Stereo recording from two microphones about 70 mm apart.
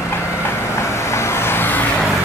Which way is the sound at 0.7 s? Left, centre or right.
Left.